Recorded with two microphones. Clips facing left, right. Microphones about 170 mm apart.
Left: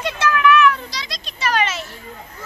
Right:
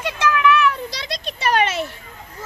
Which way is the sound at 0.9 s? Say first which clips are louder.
Right 4 dB; 60° right (ahead or behind).